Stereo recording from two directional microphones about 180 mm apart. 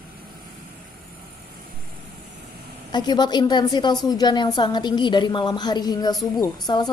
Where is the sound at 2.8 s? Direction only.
25° left (ahead or behind).